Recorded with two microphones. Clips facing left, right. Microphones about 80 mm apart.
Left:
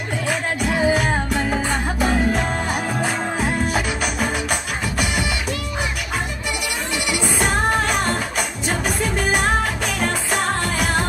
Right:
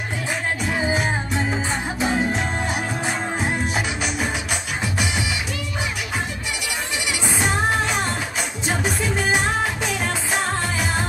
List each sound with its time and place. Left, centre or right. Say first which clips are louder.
0.3 s music: left 3 dB; left
7.3 s music: left 1 dB; left